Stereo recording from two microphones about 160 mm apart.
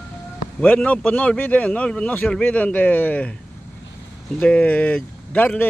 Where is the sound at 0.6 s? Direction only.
10° left (ahead or behind).